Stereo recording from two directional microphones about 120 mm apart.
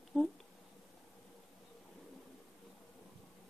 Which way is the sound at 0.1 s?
5° right (ahead or behind).